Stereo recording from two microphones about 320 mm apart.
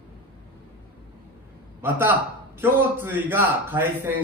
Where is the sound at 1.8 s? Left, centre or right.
Centre.